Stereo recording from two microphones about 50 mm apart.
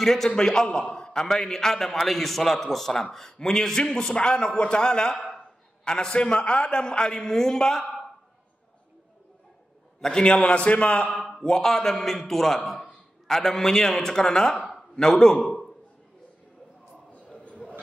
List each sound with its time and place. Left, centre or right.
0.0 s a man's voice: centre
9.9 s a man's voice: centre
11.2 s a man's voice: centre